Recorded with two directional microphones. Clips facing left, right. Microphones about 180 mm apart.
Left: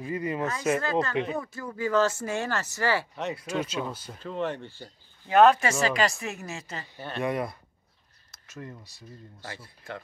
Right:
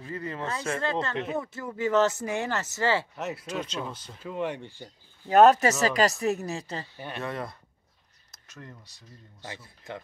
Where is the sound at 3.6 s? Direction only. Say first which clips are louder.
Left 3 dB; 10° left (ahead or behind).